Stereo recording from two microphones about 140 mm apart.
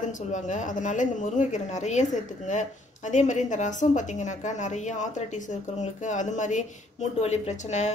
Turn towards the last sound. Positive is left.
turn(degrees=55)  # may be behind; listen again after turning